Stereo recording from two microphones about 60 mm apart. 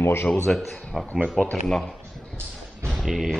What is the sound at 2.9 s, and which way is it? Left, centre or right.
Speech, centre.